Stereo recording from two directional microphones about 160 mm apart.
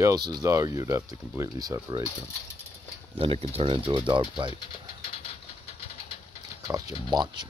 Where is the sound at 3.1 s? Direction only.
40° right (ahead or behind).